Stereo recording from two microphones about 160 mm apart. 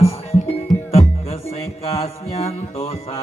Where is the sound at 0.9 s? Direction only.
40° left (ahead or behind).